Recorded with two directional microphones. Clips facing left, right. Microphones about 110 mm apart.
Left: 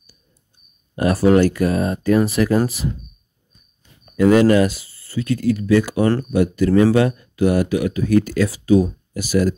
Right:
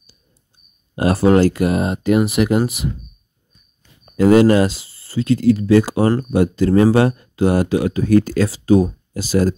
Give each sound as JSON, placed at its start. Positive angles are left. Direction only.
{"t": 0.9, "sound": "speech", "side_deg": -25}
{"t": 4.0, "sound": "speech", "side_deg": -25}